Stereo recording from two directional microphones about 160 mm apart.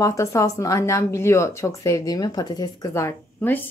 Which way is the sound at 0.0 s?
20° left (ahead or behind).